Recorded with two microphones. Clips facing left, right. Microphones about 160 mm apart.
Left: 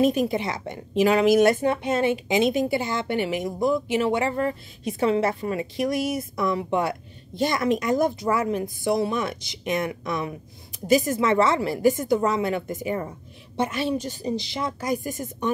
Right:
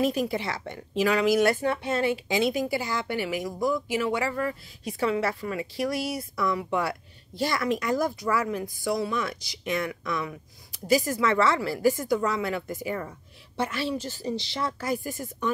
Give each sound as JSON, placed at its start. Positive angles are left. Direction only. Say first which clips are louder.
{"t": 0.0, "sound": "a woman's voice", "louder": "left 4 dB", "side_deg": 20}